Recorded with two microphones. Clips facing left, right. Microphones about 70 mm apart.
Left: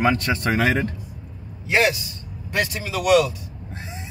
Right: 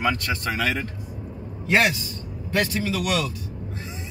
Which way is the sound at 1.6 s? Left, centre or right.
Centre.